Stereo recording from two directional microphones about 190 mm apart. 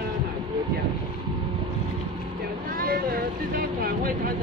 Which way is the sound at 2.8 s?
50° right (ahead or behind).